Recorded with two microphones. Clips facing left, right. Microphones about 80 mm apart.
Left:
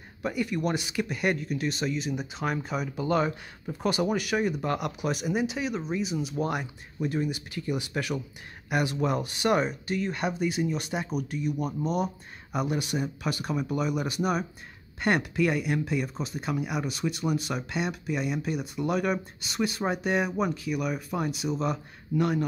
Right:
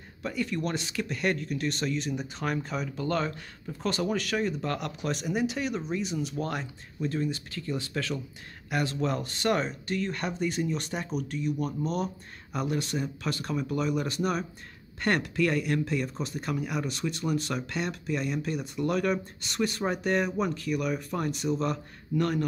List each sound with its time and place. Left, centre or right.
0.2 s speech: centre